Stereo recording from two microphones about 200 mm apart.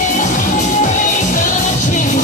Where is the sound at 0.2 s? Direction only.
40° left (ahead or behind).